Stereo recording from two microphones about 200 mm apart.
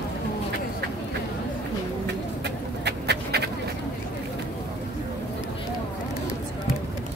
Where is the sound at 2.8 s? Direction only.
55° right (ahead or behind).